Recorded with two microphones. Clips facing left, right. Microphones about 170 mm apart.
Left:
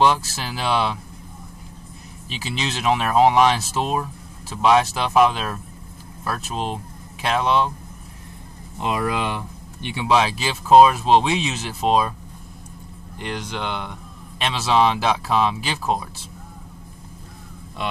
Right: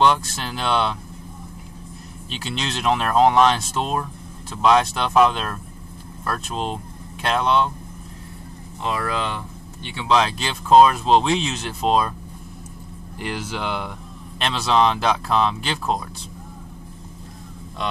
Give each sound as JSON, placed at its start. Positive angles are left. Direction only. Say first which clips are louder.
{"t": 0.0, "sound": "speech", "louder": "even", "side_deg": 5}
{"t": 2.2, "sound": "speech", "louder": "left 1 dB", "side_deg": 5}
{"t": 8.7, "sound": "speech", "louder": "left 2 dB", "side_deg": 15}
{"t": 13.2, "sound": "speech", "louder": "right 1 dB", "side_deg": -5}